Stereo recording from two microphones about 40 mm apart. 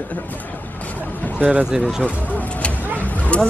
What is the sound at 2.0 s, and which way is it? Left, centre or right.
Bird, left.